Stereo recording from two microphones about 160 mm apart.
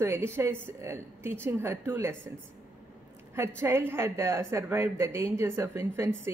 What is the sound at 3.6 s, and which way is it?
A woman's voice, 15° right (ahead or behind).